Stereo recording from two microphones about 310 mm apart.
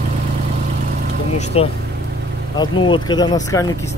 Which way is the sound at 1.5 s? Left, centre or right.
Centre.